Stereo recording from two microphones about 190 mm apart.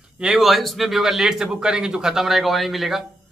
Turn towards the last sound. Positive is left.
turn(degrees=0)  # may be behind; listen again after turning